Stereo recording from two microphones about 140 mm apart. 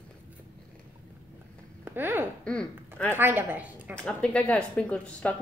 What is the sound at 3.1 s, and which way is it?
Speech, 15° right (ahead or behind).